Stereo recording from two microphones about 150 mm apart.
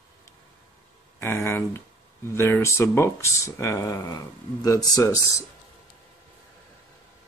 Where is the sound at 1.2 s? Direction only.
15° left (ahead or behind).